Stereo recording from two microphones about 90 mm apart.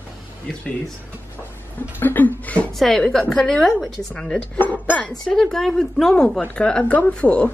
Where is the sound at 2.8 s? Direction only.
5° left (ahead or behind).